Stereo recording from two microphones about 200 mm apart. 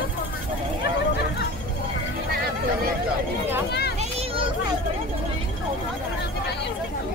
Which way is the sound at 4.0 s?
30° right (ahead or behind).